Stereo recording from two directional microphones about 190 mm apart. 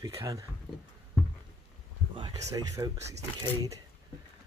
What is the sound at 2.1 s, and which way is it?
Speech, 20° right (ahead or behind).